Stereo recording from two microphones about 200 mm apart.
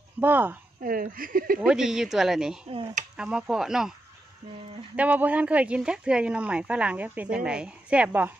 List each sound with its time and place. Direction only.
0.2 s speech: 10° right (ahead or behind)
0.8 s speech: 45° right (ahead or behind)
1.6 s speech: 5° right (ahead or behind)
4.9 s speech: 10° right (ahead or behind)